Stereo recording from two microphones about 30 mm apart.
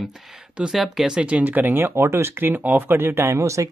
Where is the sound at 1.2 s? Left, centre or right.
Right.